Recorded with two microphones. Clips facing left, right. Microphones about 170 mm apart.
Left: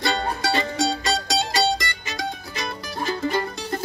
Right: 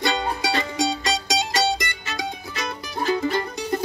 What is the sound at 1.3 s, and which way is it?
Music, 20° right (ahead or behind).